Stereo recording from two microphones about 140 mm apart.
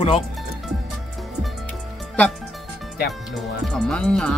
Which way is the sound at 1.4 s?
5° left (ahead or behind).